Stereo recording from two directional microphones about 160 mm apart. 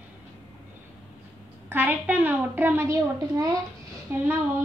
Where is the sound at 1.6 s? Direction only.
10° right (ahead or behind).